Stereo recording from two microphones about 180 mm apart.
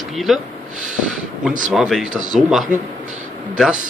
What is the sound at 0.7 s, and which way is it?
Snort, 45° right (ahead or behind).